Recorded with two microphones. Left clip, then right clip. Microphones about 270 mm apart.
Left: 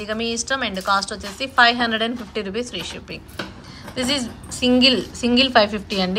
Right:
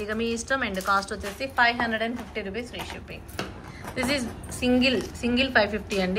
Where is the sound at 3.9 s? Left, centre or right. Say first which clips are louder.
Left 4 dB; centre.